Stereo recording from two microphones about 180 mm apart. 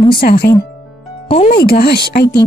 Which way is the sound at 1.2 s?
35° left (ahead or behind).